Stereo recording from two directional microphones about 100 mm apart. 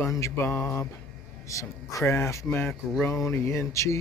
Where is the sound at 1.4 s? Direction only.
30° left (ahead or behind).